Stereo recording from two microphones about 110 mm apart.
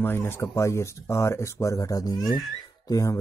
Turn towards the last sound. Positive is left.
turn(degrees=35)  # may be behind; listen again after turning